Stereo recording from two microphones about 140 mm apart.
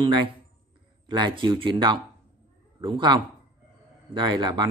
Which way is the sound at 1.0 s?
35° right (ahead or behind).